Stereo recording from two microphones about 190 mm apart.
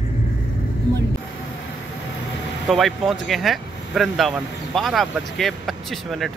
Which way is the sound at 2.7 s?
Centre (ahead or behind).